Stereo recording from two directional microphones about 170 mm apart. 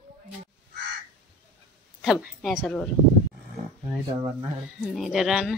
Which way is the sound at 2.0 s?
5° right (ahead or behind).